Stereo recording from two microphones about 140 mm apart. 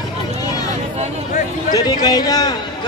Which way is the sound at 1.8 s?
30° left (ahead or behind).